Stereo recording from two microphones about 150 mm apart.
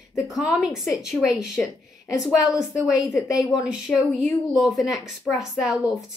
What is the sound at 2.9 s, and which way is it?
Speech, 20° left (ahead or behind).